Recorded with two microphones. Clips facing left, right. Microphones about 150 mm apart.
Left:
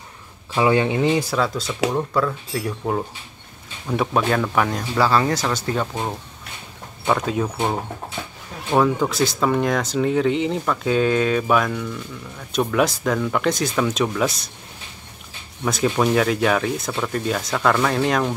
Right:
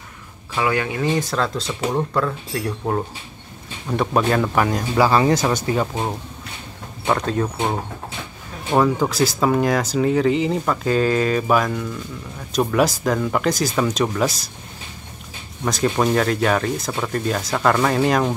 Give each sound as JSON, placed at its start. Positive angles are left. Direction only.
{"t": 0.6, "sound": "speech", "side_deg": 25}
{"t": 1.3, "sound": "speech", "side_deg": 5}
{"t": 3.9, "sound": "speech", "side_deg": 0}
{"t": 4.9, "sound": "speech", "side_deg": -15}
{"t": 7.1, "sound": "speech", "side_deg": 5}
{"t": 8.7, "sound": "speech", "side_deg": 0}
{"t": 15.6, "sound": "speech", "side_deg": 0}